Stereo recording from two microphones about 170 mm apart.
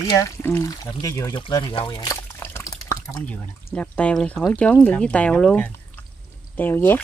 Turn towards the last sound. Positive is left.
turn(degrees=10)  # may be behind; listen again after turning